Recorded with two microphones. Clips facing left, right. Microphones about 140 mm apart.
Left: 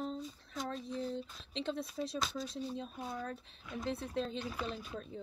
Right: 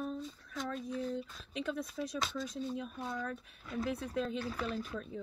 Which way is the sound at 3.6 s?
Centre (ahead or behind).